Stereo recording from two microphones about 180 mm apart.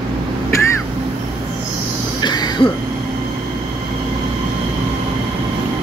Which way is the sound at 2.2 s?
25° left (ahead or behind).